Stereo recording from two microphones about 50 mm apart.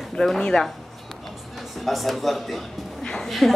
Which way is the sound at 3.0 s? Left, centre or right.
Centre.